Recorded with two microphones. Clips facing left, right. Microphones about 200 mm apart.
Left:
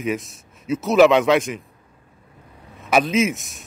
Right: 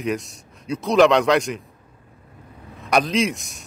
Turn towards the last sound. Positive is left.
turn(degrees=0)  # may be behind; listen again after turning